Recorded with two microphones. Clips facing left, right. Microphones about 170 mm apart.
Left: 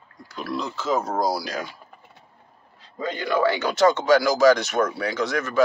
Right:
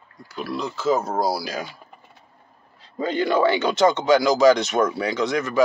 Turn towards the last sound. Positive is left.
turn(degrees=-15)  # may be behind; listen again after turning